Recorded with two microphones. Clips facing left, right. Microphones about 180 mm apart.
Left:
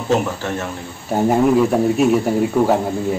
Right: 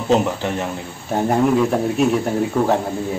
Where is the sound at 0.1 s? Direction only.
15° right (ahead or behind).